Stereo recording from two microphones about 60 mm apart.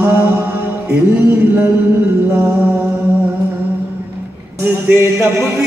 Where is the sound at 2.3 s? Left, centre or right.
Right.